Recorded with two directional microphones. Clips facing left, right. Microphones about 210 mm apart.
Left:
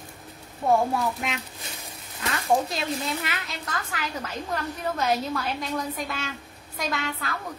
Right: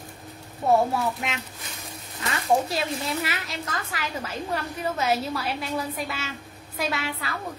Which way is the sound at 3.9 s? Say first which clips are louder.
Right 1 dB; 5° right (ahead or behind).